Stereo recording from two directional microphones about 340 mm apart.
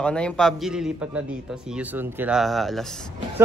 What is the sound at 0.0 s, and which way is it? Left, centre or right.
A man's voice, centre.